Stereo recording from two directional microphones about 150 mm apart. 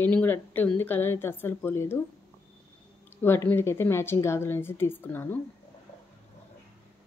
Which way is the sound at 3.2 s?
15° left (ahead or behind).